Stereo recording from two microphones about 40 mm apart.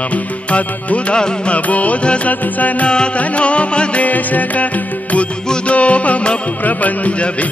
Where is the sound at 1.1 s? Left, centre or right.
Left.